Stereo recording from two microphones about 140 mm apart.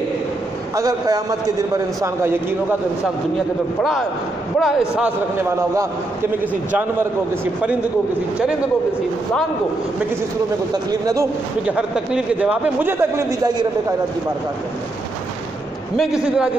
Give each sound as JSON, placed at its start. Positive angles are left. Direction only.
{"t": 0.7, "sound": "a man's voice", "side_deg": -25}
{"t": 4.6, "sound": "a man's voice", "side_deg": -5}
{"t": 6.7, "sound": "speech", "side_deg": -15}
{"t": 10.9, "sound": "a man's voice", "side_deg": -25}
{"t": 11.6, "sound": "speech", "side_deg": -5}
{"t": 16.0, "sound": "a man's voice", "side_deg": -5}